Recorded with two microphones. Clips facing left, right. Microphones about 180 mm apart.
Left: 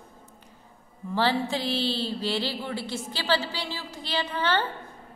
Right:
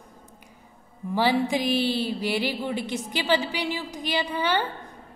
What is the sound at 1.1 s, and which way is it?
A woman's voice, 15° right (ahead or behind).